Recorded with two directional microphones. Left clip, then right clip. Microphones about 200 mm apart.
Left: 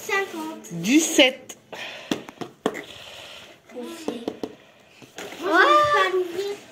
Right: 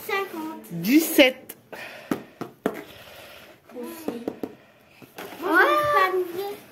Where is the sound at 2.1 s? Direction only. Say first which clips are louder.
Right 1 dB; 20° right (ahead or behind).